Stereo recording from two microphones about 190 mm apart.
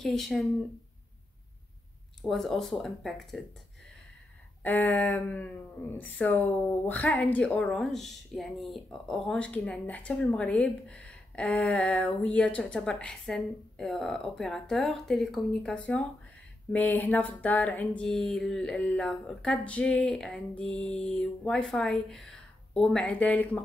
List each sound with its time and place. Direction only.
0.0 s music: centre (ahead or behind)
2.2 s music: centre (ahead or behind)
4.6 s speech: 10° left (ahead or behind)
12.2 s music: 5° left (ahead or behind)